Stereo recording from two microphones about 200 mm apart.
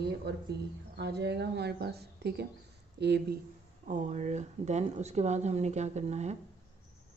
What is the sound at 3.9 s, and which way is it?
Speech, 35° right (ahead or behind).